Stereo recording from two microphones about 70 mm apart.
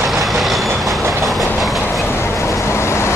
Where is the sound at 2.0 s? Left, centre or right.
Left.